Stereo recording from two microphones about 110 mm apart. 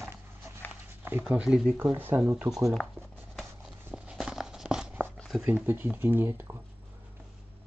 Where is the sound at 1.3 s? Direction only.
10° right (ahead or behind).